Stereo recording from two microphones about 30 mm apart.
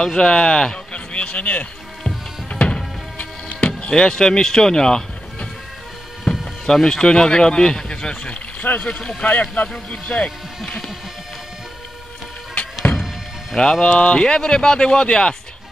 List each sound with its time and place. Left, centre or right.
0.0 s speech: left
0.9 s speech: left
2.5 s music: left
3.9 s speech: left
6.3 s music: centre
6.6 s a man's voice: left
9.2 s speech: left
9.8 s a man's voice: left
12.9 s music: left
13.6 s speech: left